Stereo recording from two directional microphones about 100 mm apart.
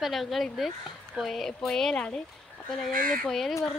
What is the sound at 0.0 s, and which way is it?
Speech, centre (ahead or behind).